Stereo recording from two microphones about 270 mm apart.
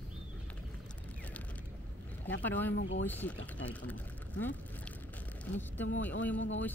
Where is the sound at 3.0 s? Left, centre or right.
Centre.